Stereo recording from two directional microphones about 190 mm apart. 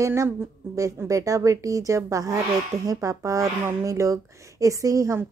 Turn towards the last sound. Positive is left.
turn(degrees=-15)  # may be behind; listen again after turning